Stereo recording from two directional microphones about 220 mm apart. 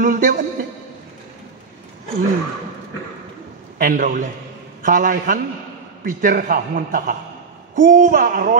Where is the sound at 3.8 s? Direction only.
40° right (ahead or behind).